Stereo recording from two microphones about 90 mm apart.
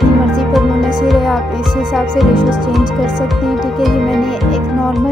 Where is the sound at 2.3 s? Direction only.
60° right (ahead or behind).